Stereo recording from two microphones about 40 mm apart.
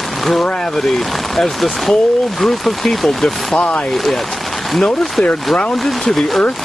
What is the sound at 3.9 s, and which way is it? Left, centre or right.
Speech, centre.